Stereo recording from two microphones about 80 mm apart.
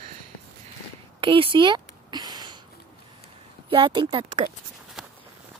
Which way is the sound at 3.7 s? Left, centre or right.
Right.